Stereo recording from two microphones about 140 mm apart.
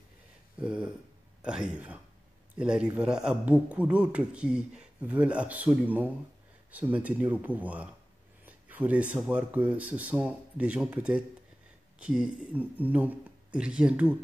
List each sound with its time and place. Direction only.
0.6 s a man's voice: 5° right (ahead or behind)